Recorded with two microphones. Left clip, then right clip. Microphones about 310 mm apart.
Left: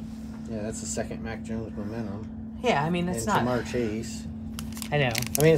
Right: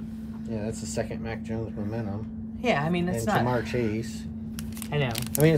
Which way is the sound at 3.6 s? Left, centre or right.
Right.